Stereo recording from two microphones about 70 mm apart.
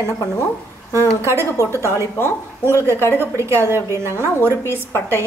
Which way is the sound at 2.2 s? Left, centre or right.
Left.